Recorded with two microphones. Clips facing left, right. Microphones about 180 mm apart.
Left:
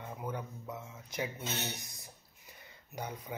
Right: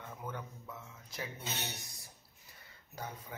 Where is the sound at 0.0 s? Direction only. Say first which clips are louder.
Left 4 dB; 15° left (ahead or behind).